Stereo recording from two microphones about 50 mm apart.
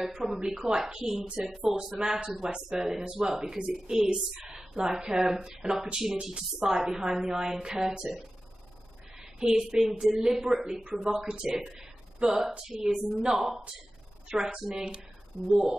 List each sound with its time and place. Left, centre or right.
0.0 s a woman's voice: centre
1.2 s speech: right
1.7 s a woman's voice: centre
2.1 s speech: right
2.4 s a woman's voice: centre
9.2 s a woman's voice: centre
10.8 s a woman's voice: right